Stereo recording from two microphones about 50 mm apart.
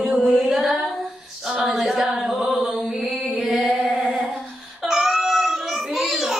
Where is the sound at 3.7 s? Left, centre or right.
Centre.